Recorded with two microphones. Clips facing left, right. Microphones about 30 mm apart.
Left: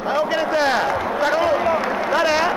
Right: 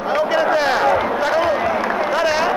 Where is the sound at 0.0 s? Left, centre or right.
Centre.